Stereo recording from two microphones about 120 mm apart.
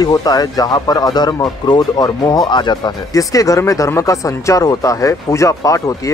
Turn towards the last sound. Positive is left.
turn(degrees=25)  # may be behind; listen again after turning